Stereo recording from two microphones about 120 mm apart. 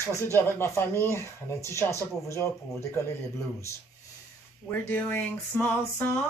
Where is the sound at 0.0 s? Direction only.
25° left (ahead or behind).